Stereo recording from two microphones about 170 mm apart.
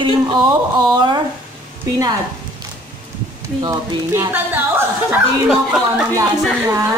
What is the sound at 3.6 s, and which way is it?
Speech, 15° right (ahead or behind).